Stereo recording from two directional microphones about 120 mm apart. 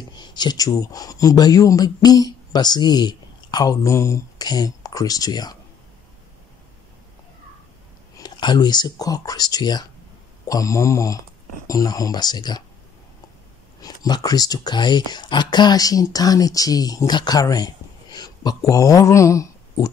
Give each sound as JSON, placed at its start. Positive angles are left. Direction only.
{"t": 0.1, "sound": "speech", "side_deg": 35}
{"t": 8.2, "sound": "speech", "side_deg": 35}
{"t": 13.7, "sound": "speech", "side_deg": 35}